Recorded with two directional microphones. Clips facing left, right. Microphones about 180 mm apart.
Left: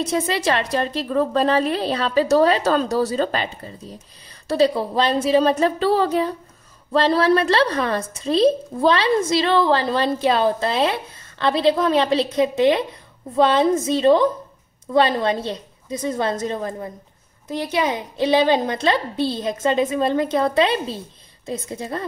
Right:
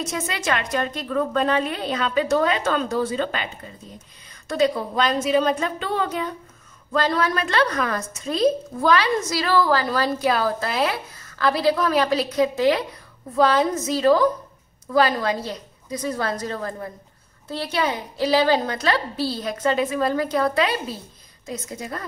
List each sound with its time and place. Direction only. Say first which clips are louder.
0.0 s a woman's voice: left 6 dB; 30° left (ahead or behind)
4.5 s a woman's voice: left 3 dB; 30° left (ahead or behind)